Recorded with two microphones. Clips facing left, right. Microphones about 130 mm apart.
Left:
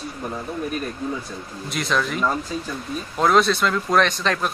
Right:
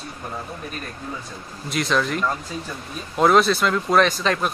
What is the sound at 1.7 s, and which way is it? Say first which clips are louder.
Speech: right 2 dB; centre (ahead or behind).